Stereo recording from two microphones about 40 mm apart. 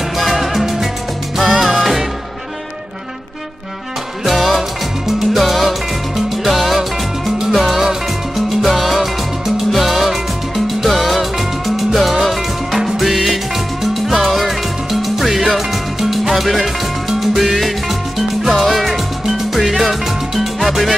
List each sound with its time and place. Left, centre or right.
0.2 s music: centre
4.2 s music: centre